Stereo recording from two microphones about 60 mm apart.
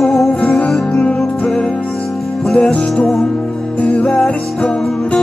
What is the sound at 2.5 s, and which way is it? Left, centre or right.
Music, centre.